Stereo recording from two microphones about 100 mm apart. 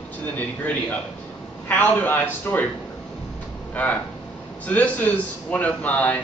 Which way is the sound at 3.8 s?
15° left (ahead or behind).